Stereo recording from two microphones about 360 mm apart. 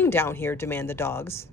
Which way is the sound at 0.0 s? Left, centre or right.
Centre.